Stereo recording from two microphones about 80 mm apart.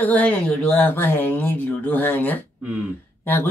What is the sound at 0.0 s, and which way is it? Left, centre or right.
Speech, centre.